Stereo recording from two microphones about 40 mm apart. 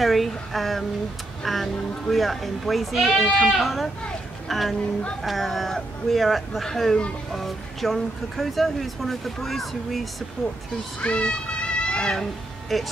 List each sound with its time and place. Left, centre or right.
0.0 s speech: centre
11.0 s meow: left
12.0 s speech: centre
12.7 s speech: centre